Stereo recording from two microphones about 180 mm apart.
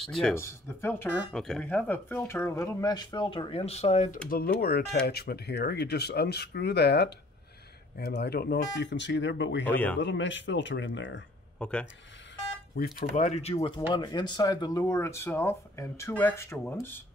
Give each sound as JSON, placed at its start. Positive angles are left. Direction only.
{"t": 0.0, "sound": "speech", "side_deg": 0}
{"t": 0.3, "sound": "speech", "side_deg": 15}
{"t": 4.3, "sound": "speech", "side_deg": 55}
{"t": 8.7, "sound": "speech", "side_deg": 75}
{"t": 9.7, "sound": "speech", "side_deg": 10}
{"t": 9.9, "sound": "speech", "side_deg": 90}
{"t": 11.6, "sound": "speech", "side_deg": 5}
{"t": 12.7, "sound": "speech", "side_deg": 60}
{"t": 13.1, "sound": "speech", "side_deg": 40}
{"t": 13.6, "sound": "speech", "side_deg": 20}